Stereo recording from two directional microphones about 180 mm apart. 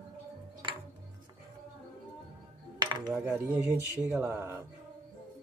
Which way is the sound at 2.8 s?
20° right (ahead or behind).